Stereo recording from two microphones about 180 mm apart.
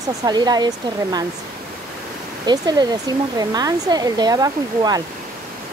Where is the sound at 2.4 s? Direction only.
20° right (ahead or behind).